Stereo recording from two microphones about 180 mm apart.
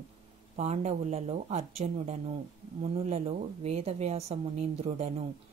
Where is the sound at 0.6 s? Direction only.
40° right (ahead or behind).